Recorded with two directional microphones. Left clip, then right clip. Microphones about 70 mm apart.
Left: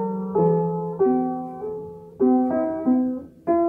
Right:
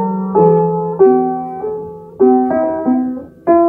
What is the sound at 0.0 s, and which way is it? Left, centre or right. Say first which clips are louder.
Music: right 10 dB; right.